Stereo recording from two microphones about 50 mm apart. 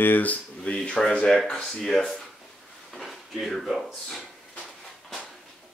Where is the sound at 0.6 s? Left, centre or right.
Centre.